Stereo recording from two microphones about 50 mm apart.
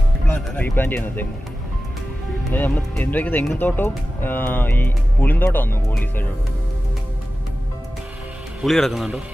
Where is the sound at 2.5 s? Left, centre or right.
Left.